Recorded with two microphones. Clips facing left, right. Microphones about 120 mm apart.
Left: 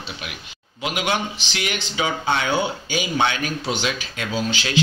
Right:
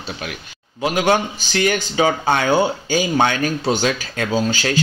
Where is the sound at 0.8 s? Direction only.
40° right (ahead or behind).